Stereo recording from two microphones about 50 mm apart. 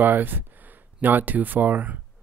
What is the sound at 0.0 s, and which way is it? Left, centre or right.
Speech, right.